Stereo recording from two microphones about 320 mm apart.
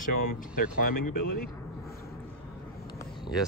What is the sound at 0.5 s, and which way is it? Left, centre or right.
Speech, left.